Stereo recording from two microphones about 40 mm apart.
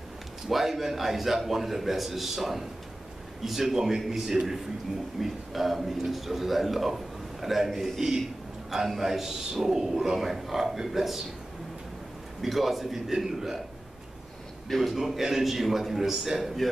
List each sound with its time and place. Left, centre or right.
0.5 s a man's voice: centre
12.4 s a man's voice: centre
14.7 s a man's voice: centre